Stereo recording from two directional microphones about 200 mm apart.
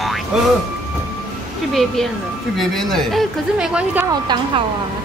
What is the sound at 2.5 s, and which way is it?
Speech, centre (ahead or behind).